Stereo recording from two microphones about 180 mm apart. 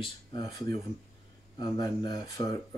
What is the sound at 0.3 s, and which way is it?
Speech, 20° left (ahead or behind).